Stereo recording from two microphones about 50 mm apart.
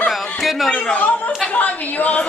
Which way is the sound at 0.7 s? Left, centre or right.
Centre.